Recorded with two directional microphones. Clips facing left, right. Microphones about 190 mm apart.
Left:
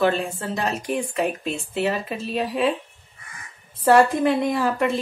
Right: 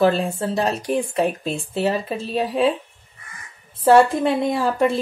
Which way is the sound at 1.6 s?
35° right (ahead or behind).